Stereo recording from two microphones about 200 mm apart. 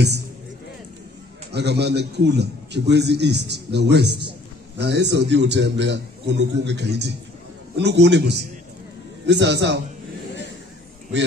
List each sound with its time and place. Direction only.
1.5 s a man's voice: 55° right (ahead or behind)